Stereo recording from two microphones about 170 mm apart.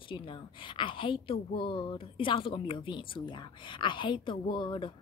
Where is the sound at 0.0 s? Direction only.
30° left (ahead or behind).